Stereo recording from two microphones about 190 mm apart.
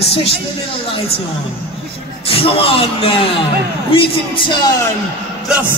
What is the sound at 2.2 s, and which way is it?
A man's voice, 30° left (ahead or behind).